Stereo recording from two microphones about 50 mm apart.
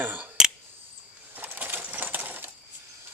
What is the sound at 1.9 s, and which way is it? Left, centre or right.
Typewriter, right.